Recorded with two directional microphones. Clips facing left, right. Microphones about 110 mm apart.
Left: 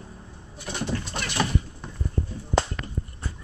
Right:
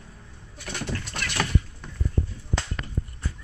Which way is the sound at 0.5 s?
15° left (ahead or behind).